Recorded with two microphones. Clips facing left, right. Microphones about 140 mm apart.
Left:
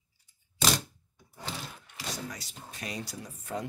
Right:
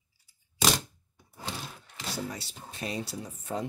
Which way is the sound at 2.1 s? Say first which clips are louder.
Right 4 dB; 30° right (ahead or behind).